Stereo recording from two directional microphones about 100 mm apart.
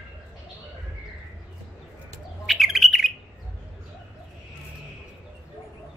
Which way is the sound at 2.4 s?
Centre (ahead or behind).